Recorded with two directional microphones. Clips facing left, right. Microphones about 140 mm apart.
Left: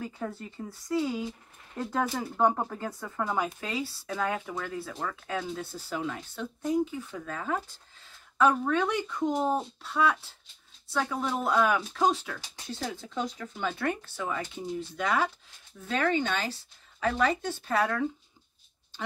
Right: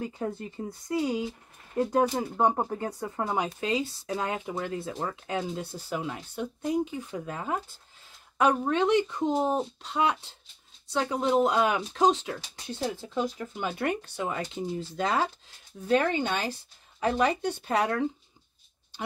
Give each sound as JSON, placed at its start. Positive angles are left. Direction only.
{"t": 0.2, "sound": "speech", "side_deg": -20}
{"t": 14.5, "sound": "speech", "side_deg": -30}
{"t": 16.0, "sound": "speech", "side_deg": -15}